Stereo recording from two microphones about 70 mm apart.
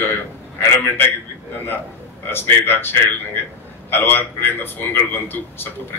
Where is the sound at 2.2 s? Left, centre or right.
Left.